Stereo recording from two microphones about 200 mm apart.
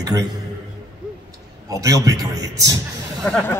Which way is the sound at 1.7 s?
15° right (ahead or behind).